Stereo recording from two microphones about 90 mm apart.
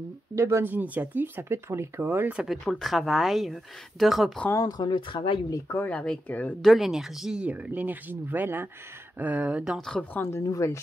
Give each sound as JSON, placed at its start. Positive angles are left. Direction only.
{"t": 0.4, "sound": "speech", "side_deg": -30}
{"t": 2.3, "sound": "speech", "side_deg": 0}
{"t": 4.6, "sound": "speech", "side_deg": 50}
{"t": 5.9, "sound": "speech", "side_deg": 15}
{"t": 6.6, "sound": "speech", "side_deg": 0}
{"t": 9.8, "sound": "speech", "side_deg": 5}
{"t": 10.1, "sound": "speech", "side_deg": 25}
{"t": 10.4, "sound": "a woman's voice", "side_deg": 35}